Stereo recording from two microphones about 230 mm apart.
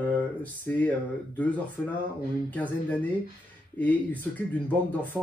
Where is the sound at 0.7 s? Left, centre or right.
Centre.